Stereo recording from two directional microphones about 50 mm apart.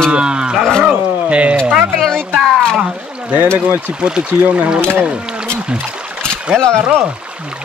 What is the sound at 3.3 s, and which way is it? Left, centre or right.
Speech, right.